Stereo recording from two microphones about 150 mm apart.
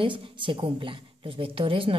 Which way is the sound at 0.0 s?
35° right (ahead or behind).